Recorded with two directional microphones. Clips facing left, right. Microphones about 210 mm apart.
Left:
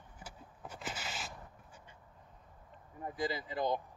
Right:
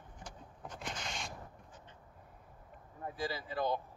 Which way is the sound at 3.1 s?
15° left (ahead or behind).